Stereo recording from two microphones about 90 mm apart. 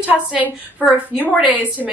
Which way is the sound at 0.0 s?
15° right (ahead or behind).